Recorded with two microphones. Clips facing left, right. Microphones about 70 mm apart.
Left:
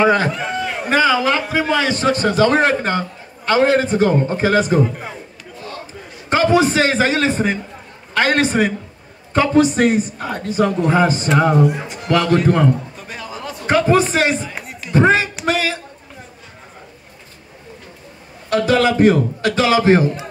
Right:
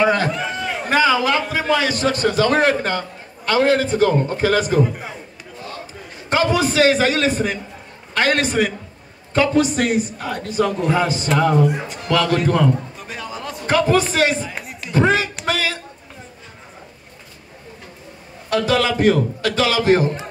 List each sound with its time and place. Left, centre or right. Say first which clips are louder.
0.0 s a man's voice: left 2 dB; left
6.3 s a man's voice: left 3 dB; left
13.0 s music: even; centre
13.7 s a man's voice: left 2 dB; left
14.5 s music: left 1 dB; centre
15.0 s a man's voice: left 3 dB; left
15.4 s a sound: left 3 dB; left
18.5 s a man's voice: left 3 dB; left